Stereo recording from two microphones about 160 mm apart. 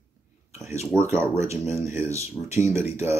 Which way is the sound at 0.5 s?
15° right (ahead or behind).